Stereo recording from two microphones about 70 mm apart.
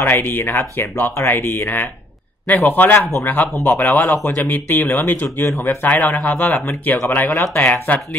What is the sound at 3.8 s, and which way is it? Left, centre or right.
Speech, left.